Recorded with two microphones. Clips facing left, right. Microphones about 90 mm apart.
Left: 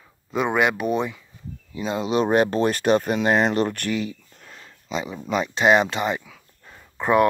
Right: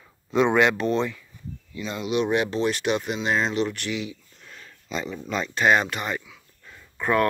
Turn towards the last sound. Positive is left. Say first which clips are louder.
# left 4 dB
turn(degrees=20)  # may be behind; listen again after turning